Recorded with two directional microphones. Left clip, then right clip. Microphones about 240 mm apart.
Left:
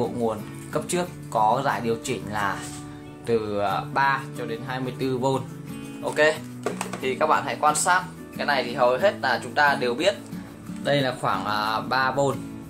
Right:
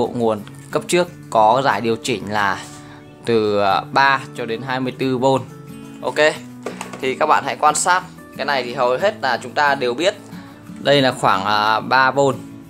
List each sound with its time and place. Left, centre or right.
0.2 s speech: right
7.0 s speech: right